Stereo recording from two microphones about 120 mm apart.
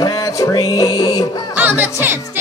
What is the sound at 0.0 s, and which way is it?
Music, 25° left (ahead or behind).